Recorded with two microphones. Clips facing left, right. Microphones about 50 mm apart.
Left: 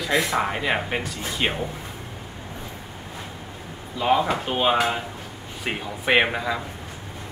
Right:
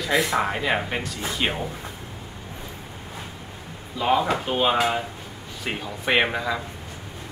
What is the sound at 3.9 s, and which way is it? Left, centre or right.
Speech, centre.